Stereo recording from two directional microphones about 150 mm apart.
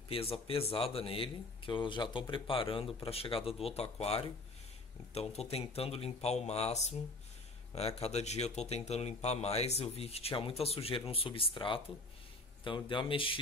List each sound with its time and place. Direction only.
0.1 s speech: 40° left (ahead or behind)